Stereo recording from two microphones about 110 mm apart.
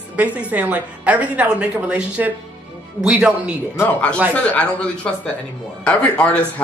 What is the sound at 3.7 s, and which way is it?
Speech, 15° left (ahead or behind).